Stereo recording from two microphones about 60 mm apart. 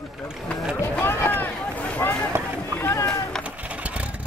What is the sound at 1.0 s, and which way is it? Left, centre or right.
Run, left.